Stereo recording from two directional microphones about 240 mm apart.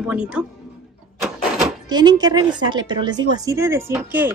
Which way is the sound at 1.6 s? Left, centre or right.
Centre.